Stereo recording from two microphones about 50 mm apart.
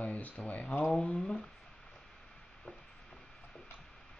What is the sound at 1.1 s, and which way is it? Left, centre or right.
Speech, centre.